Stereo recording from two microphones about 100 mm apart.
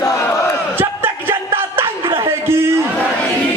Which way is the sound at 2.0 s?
60° right (ahead or behind).